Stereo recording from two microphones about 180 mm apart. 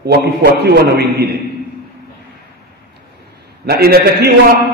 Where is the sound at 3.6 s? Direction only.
60° right (ahead or behind).